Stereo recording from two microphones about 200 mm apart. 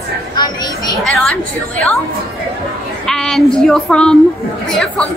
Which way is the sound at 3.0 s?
5° left (ahead or behind).